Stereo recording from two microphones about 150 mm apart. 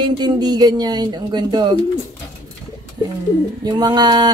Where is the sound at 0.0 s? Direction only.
25° right (ahead or behind).